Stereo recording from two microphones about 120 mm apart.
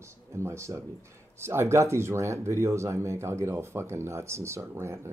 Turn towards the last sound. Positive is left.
turn(degrees=-20)  # may be behind; listen again after turning